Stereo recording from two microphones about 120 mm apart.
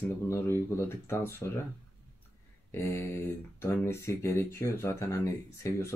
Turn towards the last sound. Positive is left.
turn(degrees=25)  # may be behind; listen again after turning